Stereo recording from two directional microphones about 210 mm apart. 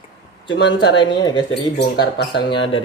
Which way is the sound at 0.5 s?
20° left (ahead or behind).